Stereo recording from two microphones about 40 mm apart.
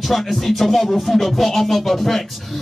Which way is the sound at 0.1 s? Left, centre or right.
Centre.